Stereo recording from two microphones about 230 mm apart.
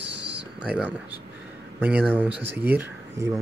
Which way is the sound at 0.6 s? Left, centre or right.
Centre.